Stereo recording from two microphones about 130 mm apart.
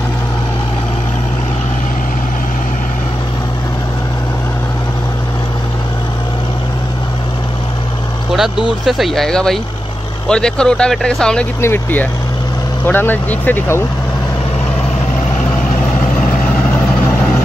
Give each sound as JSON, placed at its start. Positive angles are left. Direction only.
{"t": 8.4, "sound": "speech", "side_deg": -5}